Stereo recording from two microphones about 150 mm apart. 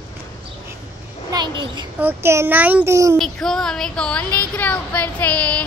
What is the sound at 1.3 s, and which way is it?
Speech, 30° right (ahead or behind).